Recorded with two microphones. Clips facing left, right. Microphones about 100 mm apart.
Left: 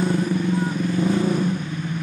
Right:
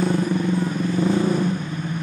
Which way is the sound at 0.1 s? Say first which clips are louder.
Right 1 dB; 35° right (ahead or behind).